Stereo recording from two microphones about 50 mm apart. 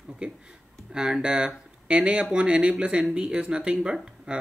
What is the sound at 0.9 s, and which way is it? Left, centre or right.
Speech, centre.